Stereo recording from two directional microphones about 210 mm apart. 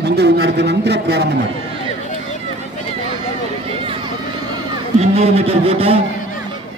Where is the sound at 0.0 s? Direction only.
50° right (ahead or behind).